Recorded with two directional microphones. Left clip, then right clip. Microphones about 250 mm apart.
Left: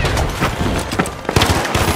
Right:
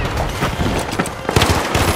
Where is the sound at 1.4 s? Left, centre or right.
Centre.